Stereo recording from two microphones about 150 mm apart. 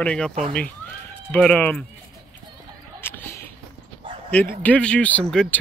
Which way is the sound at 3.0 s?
15° left (ahead or behind).